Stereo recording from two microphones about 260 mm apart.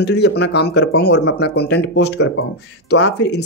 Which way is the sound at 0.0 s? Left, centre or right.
Left.